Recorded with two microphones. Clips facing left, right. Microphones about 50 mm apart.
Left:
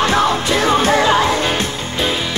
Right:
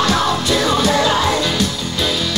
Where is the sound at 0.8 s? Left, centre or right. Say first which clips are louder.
Left 2 dB; left.